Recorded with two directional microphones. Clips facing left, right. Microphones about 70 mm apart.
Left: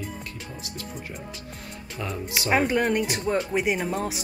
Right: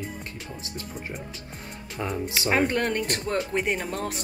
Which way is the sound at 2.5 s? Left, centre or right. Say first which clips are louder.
Left 2 dB; centre.